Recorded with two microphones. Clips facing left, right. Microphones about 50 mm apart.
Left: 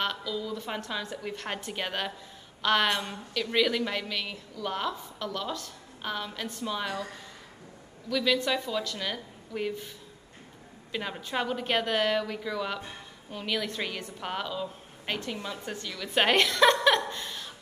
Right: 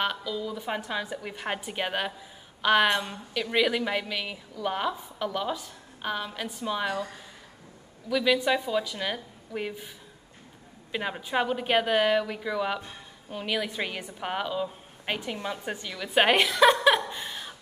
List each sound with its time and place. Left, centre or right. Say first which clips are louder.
0.0 s a woman's voice: right 2 dB; centre
8.1 s a woman's voice: right 3 dB; centre
10.9 s a woman's voice: right 3 dB; centre
17.1 s laughter: right 1 dB; centre